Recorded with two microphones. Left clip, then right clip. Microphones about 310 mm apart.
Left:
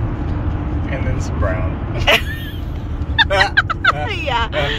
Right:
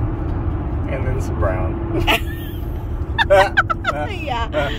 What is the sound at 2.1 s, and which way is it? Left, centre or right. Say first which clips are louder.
Speech: left 5 dB; centre.